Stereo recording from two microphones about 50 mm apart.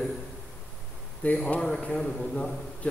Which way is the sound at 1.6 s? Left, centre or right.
Centre.